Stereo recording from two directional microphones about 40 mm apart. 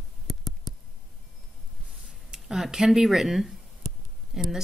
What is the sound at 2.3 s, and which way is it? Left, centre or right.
Speech, centre.